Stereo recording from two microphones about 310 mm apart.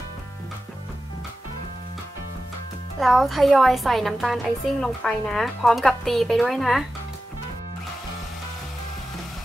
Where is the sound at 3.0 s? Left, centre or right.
Centre.